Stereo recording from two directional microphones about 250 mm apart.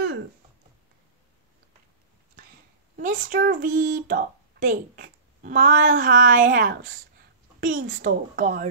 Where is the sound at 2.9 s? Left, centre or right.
Right.